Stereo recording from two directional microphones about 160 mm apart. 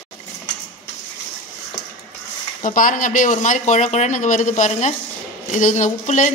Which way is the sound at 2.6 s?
55° left (ahead or behind).